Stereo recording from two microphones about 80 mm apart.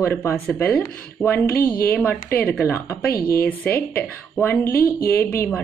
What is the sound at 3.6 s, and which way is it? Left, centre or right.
Speech, centre.